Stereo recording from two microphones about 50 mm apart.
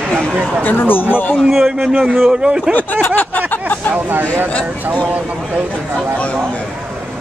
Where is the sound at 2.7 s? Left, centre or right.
Left.